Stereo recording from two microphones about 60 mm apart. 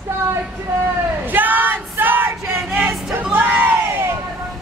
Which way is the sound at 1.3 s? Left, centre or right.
Right.